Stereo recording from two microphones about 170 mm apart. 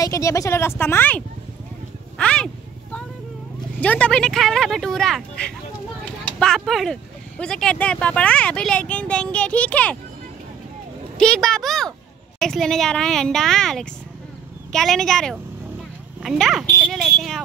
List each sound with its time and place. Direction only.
0.0 s speech: 20° left (ahead or behind)
2.1 s a sound: 5° left (ahead or behind)
3.8 s speech: 5° left (ahead or behind)
11.1 s speech: 5° left (ahead or behind)